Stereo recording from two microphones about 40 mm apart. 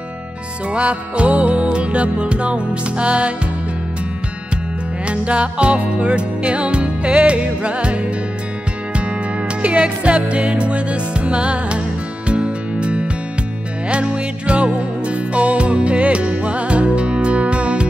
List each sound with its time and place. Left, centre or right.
0.7 s music: right
5.0 s music: right
9.6 s music: right